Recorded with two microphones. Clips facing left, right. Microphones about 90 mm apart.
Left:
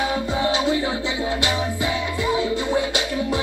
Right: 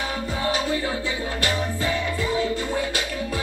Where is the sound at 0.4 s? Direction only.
20° left (ahead or behind).